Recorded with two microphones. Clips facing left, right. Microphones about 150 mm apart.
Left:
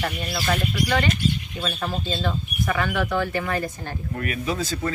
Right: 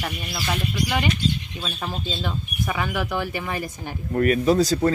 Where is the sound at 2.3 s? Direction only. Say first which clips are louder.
Left 2 dB; 10° right (ahead or behind).